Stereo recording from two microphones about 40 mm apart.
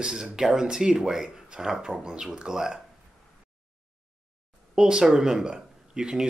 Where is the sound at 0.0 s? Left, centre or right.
Centre.